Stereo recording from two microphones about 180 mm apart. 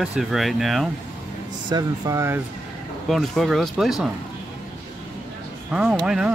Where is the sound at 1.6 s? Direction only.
20° right (ahead or behind).